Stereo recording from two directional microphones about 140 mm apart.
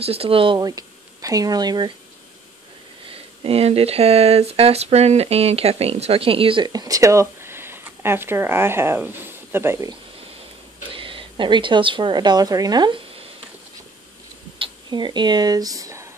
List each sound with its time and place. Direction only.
0.0 s speech: 45° right (ahead or behind)
0.6 s speech: 25° right (ahead or behind)
3.4 s speech: 45° right (ahead or behind); by 9.8 s 20° right (ahead or behind)
11.0 s a woman's voice: 40° right (ahead or behind)
14.6 s speech: 35° right (ahead or behind)